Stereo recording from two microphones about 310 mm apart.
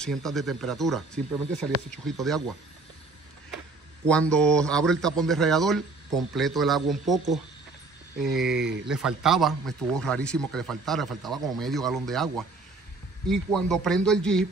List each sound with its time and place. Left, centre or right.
0.0 s speech: centre
4.1 s speech: centre
8.5 s speech: right
8.8 s speech: centre